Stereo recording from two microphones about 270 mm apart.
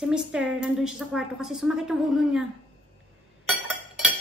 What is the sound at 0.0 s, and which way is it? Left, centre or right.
A woman's voice, centre.